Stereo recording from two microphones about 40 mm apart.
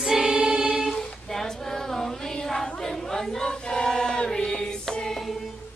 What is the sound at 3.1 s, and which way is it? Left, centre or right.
Choir, centre.